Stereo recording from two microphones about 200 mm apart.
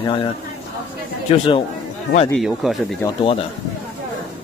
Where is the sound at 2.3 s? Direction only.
Centre (ahead or behind).